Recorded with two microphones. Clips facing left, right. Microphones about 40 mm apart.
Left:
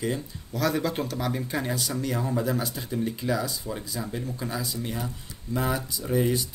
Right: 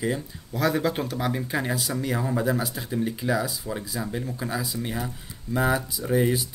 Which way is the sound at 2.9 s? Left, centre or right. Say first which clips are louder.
Right 2 dB; right.